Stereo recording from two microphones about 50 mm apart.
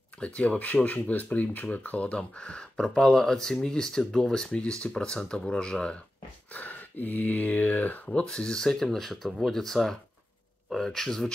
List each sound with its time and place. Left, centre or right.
0.2 s speech: left
6.5 s speech: left
8.1 s speech: centre